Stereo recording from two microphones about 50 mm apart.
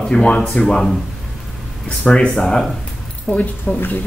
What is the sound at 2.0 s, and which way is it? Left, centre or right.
Speech, left.